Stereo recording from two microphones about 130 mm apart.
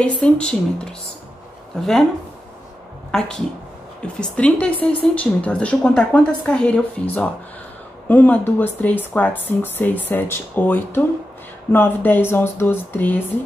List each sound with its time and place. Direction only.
0.0 s a woman's voice: 10° left (ahead or behind)
3.1 s a woman's voice: 5° left (ahead or behind)